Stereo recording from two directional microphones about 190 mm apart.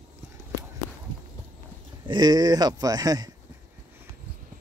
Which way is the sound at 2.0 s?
25° right (ahead or behind).